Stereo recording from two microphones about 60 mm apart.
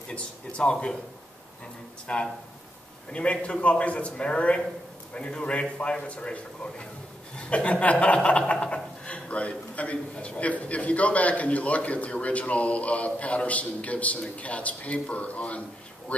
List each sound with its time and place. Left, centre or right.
0.1 s a man's voice: centre
2.1 s chuckle: centre
5.1 s a man's voice: centre
7.3 s chuckle: centre